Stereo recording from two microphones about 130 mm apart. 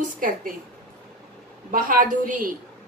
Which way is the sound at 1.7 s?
90° right.